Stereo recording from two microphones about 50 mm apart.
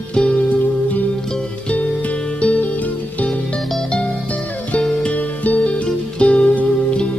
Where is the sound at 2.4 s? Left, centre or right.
Left.